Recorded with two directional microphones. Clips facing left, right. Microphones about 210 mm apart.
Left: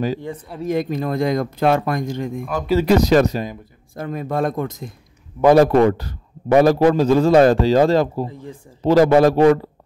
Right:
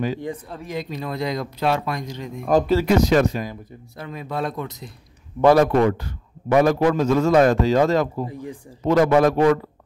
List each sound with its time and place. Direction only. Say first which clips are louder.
0.7 s speech: left 8 dB; 50° left (ahead or behind)
2.8 s a man's voice: left 3 dB; 35° left (ahead or behind)
5.6 s a man's voice: left 4 dB; 35° left (ahead or behind)
8.3 s speech: right 2 dB; 15° right (ahead or behind)
8.8 s a man's voice: left 4 dB; 35° left (ahead or behind)